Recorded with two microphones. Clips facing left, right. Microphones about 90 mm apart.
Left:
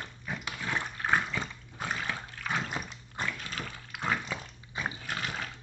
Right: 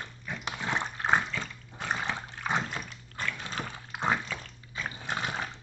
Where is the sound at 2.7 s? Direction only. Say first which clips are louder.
Left 1 dB; 15° left (ahead or behind).